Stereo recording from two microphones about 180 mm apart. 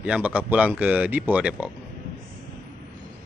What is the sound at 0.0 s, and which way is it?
Speech, 5° right (ahead or behind).